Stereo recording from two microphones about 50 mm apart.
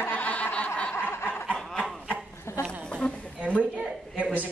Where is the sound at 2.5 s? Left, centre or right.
Left.